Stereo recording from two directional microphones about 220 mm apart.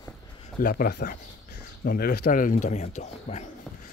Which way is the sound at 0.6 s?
40° left (ahead or behind).